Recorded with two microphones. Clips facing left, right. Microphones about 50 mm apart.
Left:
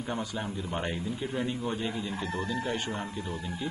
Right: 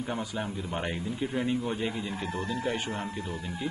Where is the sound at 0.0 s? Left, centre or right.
Centre.